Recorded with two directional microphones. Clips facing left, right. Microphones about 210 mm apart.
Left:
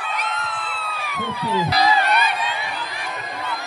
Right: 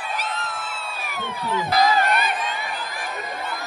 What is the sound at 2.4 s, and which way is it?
Chatter, 45° right (ahead or behind).